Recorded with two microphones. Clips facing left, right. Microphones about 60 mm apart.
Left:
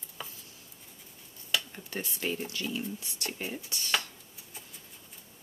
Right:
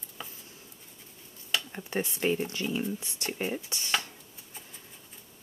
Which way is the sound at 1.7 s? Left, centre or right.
Right.